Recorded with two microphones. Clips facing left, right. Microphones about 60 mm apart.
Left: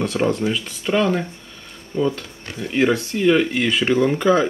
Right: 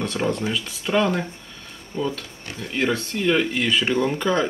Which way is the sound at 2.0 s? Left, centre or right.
Centre.